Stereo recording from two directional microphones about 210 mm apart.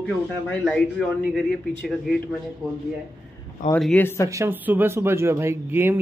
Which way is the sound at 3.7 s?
5° left (ahead or behind).